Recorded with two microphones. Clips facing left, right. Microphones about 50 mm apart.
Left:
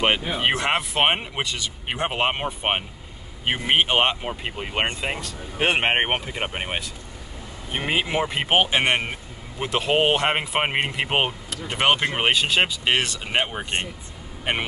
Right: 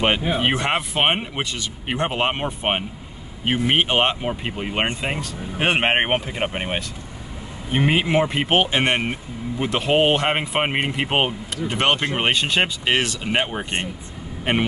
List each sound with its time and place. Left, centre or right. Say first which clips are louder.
0.4 s speech: right 1 dB; centre
8.5 s speech: right 1 dB; centre
11.7 s speech: even; centre